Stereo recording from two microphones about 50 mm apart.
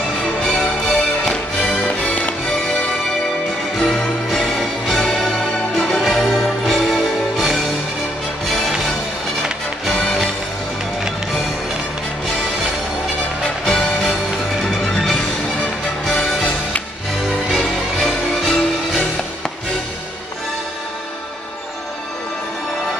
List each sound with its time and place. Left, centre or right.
0.4 s music: centre
1.8 s music: left
3.7 s music: centre
13.4 s music: centre
17.9 s music: centre